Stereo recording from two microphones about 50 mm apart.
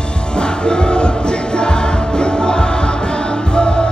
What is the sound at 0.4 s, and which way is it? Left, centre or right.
Music, centre.